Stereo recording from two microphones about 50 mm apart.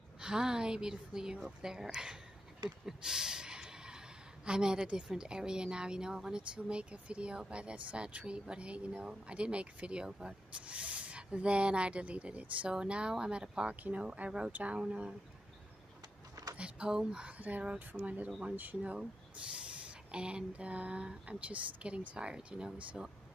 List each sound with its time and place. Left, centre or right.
0.2 s speech: centre
2.8 s a sound: centre
4.5 s speech: centre
10.0 s speech: centre
10.5 s speech: right
16.5 s speech: right
17.4 s speech: right; by 23.1 s centre